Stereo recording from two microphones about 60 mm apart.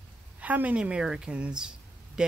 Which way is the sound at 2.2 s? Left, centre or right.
Centre.